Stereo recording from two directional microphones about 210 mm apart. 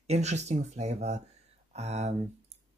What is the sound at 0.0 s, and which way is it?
Speech, 30° right (ahead or behind).